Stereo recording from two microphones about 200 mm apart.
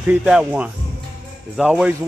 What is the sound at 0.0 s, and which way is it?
Speech, 5° right (ahead or behind).